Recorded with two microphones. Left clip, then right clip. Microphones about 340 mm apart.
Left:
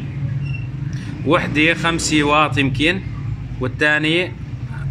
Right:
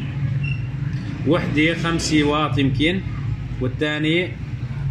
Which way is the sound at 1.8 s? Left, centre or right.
Left.